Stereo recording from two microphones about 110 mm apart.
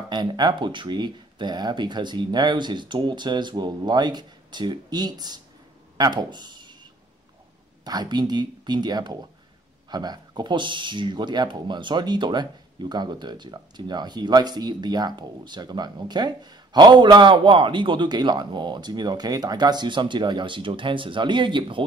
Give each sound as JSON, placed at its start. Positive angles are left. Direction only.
{"t": 0.1, "sound": "speech", "side_deg": -45}
{"t": 5.9, "sound": "a sound", "side_deg": -40}
{"t": 7.8, "sound": "speech", "side_deg": -40}